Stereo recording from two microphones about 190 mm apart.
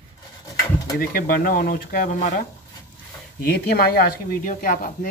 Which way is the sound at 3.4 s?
55° left (ahead or behind).